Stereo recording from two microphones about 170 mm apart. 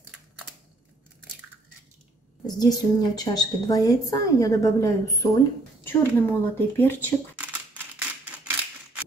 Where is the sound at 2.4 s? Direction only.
25° left (ahead or behind).